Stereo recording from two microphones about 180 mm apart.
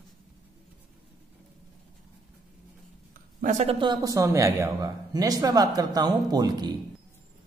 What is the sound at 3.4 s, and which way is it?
Speech, 40° right (ahead or behind).